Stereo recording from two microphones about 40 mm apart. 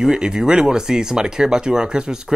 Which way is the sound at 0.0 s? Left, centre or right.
Centre.